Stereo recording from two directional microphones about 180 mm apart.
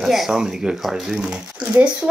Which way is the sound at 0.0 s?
Centre (ahead or behind).